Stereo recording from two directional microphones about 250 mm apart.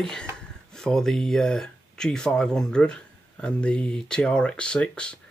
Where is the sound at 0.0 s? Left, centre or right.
Centre.